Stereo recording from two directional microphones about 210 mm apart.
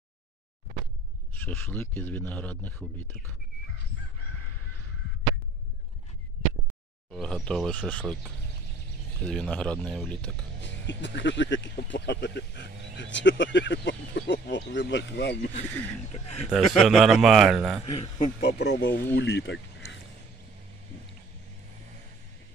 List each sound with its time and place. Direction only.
1.3 s a man's voice: 10° left (ahead or behind)
7.1 s a man's voice: 5° left (ahead or behind)
10.6 s speech: 60° left (ahead or behind)
16.4 s a man's voice: centre (ahead or behind)
18.2 s speech: 50° left (ahead or behind)